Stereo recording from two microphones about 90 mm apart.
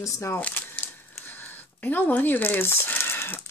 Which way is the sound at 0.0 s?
30° left (ahead or behind).